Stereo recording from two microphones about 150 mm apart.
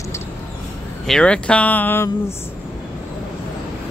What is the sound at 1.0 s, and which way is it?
Speech, 5° left (ahead or behind).